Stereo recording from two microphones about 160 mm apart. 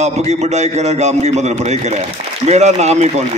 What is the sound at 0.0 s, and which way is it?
A man's voice, 45° right (ahead or behind).